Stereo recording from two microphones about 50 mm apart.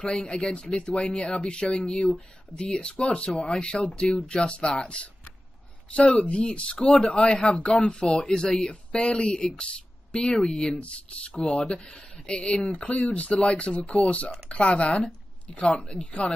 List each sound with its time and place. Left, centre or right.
0.0 s speech: centre